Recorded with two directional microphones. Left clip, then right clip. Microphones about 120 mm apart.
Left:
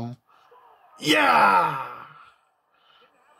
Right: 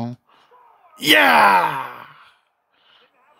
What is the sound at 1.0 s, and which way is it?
Speech, 65° right (ahead or behind).